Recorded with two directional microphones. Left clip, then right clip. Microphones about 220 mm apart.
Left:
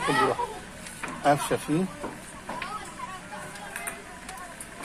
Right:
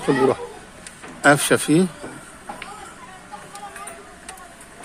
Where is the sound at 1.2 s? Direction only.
50° right (ahead or behind).